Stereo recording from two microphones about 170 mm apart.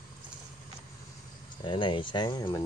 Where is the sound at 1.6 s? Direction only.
30° left (ahead or behind).